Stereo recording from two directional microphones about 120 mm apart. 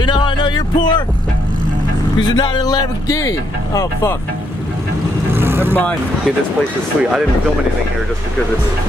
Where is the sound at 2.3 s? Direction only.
35° left (ahead or behind).